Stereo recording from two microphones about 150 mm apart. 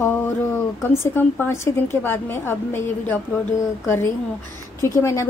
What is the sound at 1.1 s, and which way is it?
A woman's voice, 15° left (ahead or behind).